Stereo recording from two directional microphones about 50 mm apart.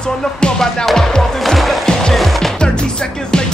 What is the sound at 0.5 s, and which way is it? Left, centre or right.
Music, centre.